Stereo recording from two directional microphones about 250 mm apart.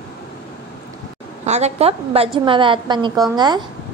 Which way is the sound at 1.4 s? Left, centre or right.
Right.